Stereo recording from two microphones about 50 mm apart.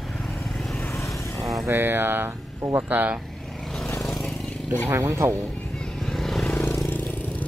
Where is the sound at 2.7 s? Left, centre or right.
Right.